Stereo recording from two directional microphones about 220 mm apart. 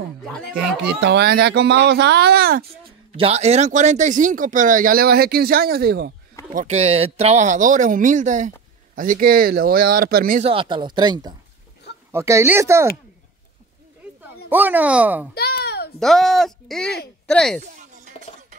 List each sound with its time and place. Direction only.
0.2 s speech: centre (ahead or behind)
0.8 s speech: 50° right (ahead or behind)
3.2 s speech: 30° right (ahead or behind); by 6.1 s 45° right (ahead or behind)
6.5 s speech: 30° right (ahead or behind)
10.4 s speech: 25° right (ahead or behind)
14.5 s speech: 10° right (ahead or behind)
15.3 s a sound: 45° left (ahead or behind)
16.0 s speech: centre (ahead or behind)
17.6 s music: 35° right (ahead or behind)